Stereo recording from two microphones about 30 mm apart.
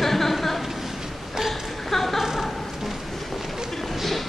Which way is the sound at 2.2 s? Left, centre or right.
Centre.